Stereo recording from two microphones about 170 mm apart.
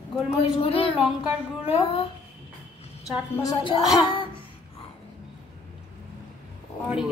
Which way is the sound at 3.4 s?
20° left (ahead or behind).